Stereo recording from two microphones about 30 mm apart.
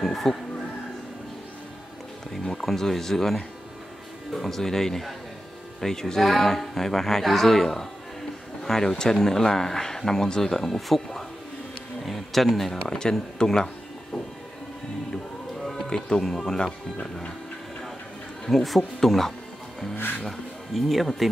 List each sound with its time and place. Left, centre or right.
0.0 s speech: centre
2.6 s speech: centre
12.0 s insect: centre
12.8 s speech: centre
15.6 s music: centre
16.2 s speech: centre
18.5 s speech: centre